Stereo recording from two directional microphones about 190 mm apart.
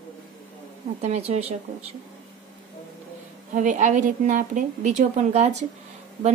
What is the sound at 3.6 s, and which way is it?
A woman's voice, 40° right (ahead or behind).